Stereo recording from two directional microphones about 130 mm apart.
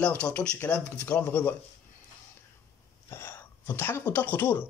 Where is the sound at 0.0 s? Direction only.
10° left (ahead or behind).